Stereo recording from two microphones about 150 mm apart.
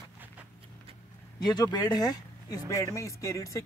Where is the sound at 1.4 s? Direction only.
25° left (ahead or behind).